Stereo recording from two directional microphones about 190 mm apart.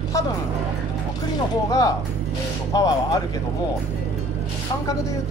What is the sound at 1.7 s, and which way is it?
Speech, 20° left (ahead or behind).